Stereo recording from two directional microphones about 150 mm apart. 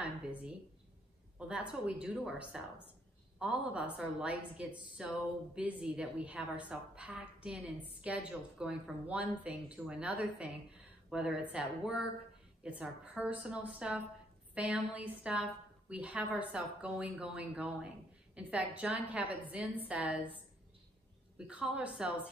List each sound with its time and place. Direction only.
0.0 s a woman's voice: 10° right (ahead or behind)
21.4 s a woman's voice: 10° right (ahead or behind)